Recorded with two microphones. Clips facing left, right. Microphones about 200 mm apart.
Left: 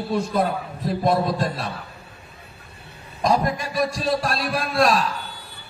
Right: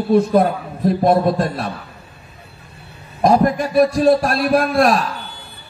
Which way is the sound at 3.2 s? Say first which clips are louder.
Right 7 dB; 55° right (ahead or behind).